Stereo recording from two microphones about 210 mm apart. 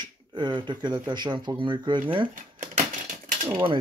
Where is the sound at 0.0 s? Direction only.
20° right (ahead or behind).